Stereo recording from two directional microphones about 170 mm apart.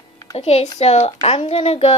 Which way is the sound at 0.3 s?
40° left (ahead or behind).